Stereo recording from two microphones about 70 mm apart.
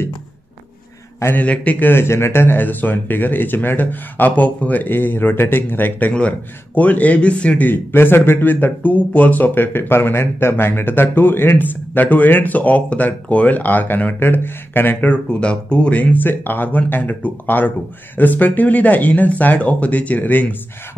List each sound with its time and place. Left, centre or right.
1.4 s speech: centre
1.9 s speech: left
15.2 s speech: centre